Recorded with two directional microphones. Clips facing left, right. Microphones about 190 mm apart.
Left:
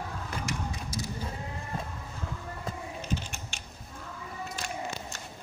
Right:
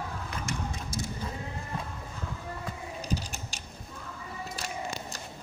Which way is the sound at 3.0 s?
40° right (ahead or behind).